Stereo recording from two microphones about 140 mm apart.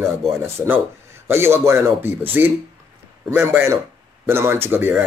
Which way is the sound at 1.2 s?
20° right (ahead or behind).